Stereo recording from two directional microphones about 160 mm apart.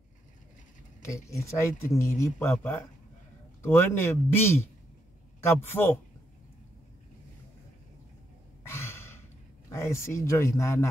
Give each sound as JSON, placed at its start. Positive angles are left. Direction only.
{"t": 1.0, "sound": "speech", "side_deg": 20}
{"t": 8.6, "sound": "a sound", "side_deg": 15}
{"t": 9.7, "sound": "speech", "side_deg": 15}